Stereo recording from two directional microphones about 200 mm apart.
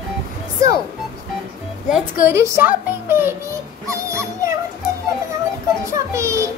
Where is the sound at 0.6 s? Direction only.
15° right (ahead or behind).